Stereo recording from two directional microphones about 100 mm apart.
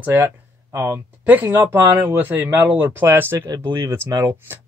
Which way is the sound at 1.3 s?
20° right (ahead or behind).